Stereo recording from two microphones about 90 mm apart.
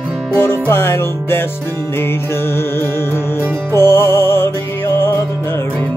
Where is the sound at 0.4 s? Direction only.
25° left (ahead or behind).